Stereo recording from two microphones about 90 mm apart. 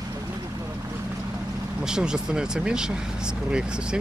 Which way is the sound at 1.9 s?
10° right (ahead or behind).